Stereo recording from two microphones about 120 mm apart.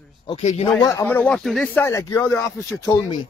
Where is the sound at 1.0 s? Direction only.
15° left (ahead or behind).